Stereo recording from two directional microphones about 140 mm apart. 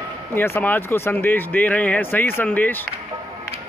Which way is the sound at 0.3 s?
15° left (ahead or behind).